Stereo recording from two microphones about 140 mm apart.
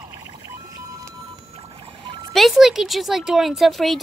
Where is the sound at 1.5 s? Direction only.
45° right (ahead or behind).